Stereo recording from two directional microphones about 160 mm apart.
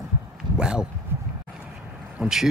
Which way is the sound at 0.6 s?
5° right (ahead or behind).